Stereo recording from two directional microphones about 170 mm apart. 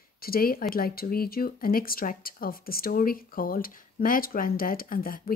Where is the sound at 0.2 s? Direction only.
60° left (ahead or behind).